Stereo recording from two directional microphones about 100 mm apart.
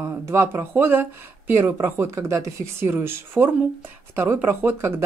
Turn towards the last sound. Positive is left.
turn(degrees=-20)  # may be behind; listen again after turning